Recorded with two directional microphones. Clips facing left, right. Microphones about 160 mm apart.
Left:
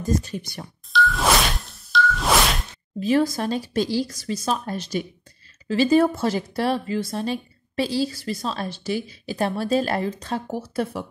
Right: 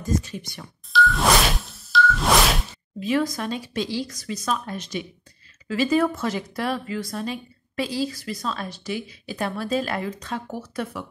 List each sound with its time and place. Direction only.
0.0 s speech: 35° left (ahead or behind)
0.9 s a sound: centre (ahead or behind)
3.0 s speech: 35° left (ahead or behind)